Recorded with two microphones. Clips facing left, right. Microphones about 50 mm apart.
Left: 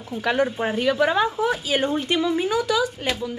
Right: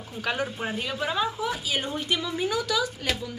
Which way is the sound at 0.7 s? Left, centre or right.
Left.